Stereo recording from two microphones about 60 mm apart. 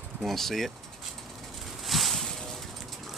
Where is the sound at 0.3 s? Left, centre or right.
Centre.